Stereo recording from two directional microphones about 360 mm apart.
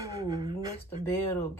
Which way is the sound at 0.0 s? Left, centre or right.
Centre.